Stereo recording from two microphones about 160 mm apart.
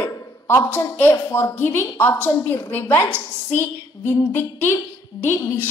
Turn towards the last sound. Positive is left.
turn(degrees=15)  # may be behind; listen again after turning